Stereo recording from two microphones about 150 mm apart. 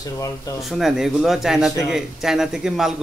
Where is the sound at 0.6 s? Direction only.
Centre (ahead or behind).